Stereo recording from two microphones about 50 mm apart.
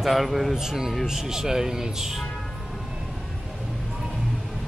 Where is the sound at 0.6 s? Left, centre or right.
Centre.